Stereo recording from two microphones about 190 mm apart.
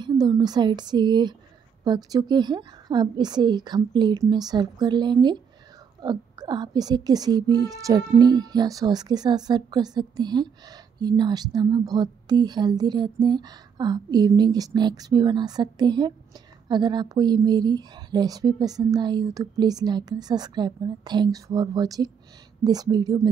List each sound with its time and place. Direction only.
0.0 s speech: 20° right (ahead or behind)